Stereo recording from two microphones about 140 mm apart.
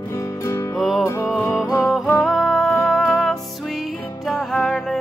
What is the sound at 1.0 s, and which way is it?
Music, 20° left (ahead or behind).